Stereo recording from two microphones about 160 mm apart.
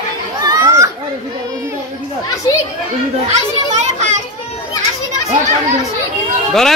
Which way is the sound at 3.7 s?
50° right (ahead or behind).